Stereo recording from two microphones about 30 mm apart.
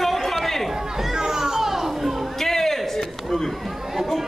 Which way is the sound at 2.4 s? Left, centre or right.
Centre.